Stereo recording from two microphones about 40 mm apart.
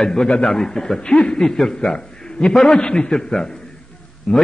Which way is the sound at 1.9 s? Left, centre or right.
Centre.